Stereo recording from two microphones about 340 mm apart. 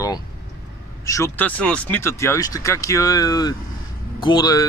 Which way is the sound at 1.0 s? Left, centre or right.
Centre.